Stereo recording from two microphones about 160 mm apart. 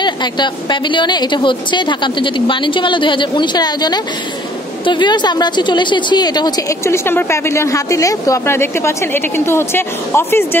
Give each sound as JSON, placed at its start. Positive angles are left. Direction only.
{"t": 0.0, "sound": "a woman's voice", "side_deg": 30}